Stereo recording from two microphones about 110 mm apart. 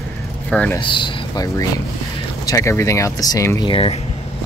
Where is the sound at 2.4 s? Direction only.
30° left (ahead or behind).